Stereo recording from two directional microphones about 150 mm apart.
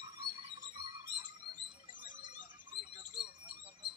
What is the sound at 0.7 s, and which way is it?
Music, 30° right (ahead or behind).